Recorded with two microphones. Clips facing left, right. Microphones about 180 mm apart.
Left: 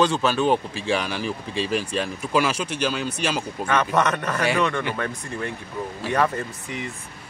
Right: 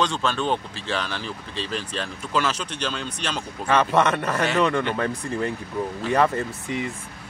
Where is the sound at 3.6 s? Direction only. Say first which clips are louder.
Right 2 dB; 30° right (ahead or behind).